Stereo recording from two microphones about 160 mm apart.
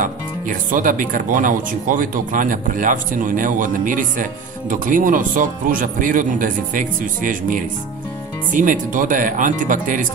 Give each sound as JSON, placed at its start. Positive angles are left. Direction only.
{"t": 0.0, "sound": "speech", "side_deg": -55}